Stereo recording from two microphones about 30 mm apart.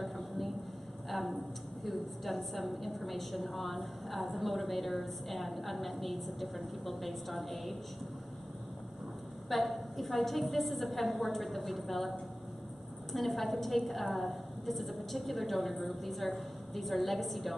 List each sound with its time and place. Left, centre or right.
0.0 s a sound: centre
1.1 s a woman's voice: centre
9.5 s a woman's voice: centre
13.1 s a woman's voice: centre